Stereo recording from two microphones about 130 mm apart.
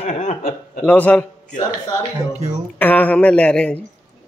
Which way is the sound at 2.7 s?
10° left (ahead or behind).